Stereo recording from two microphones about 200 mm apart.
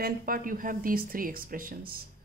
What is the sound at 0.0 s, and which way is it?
Speech, 45° right (ahead or behind).